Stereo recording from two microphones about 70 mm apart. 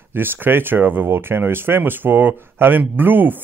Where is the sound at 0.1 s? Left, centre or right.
Right.